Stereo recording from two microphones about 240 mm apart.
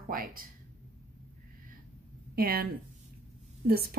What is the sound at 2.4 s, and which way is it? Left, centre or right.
Speech, right.